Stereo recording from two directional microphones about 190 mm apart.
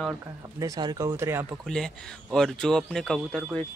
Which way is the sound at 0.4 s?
20° right (ahead or behind).